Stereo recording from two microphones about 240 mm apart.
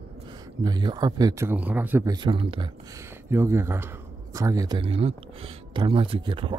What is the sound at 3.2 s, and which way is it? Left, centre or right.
Speech, centre.